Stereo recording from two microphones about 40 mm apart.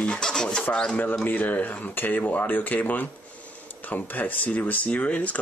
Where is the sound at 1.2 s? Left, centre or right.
Left.